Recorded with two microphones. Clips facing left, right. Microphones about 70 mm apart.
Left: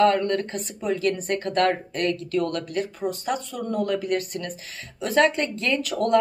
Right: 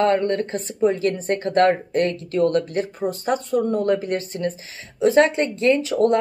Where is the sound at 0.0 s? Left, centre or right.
Right.